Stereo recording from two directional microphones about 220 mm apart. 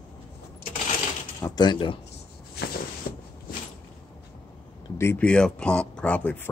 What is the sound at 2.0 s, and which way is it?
Chopping, 45° left (ahead or behind).